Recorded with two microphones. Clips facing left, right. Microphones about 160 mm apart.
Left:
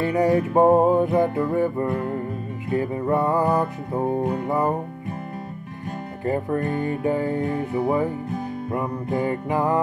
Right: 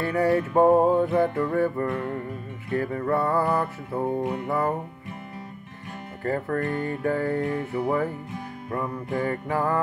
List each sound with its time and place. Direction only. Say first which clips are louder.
0.0 s music: left 3 dB; 15° left (ahead or behind)
6.2 s music: left 3 dB; 15° left (ahead or behind)